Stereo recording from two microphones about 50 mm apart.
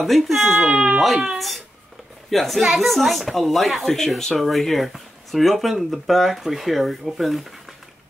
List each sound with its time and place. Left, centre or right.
0.0 s speech: centre
0.7 s speech: right
1.0 s speech: centre